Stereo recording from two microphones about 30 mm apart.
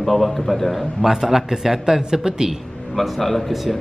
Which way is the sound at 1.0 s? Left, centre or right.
Centre.